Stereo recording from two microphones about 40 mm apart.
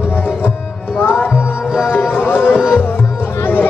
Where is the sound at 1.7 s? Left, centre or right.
Centre.